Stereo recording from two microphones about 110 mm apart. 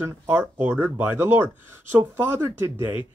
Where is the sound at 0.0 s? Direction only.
20° right (ahead or behind).